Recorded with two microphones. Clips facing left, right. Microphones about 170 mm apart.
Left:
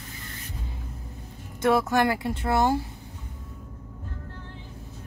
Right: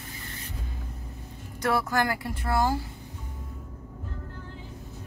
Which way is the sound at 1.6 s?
20° left (ahead or behind).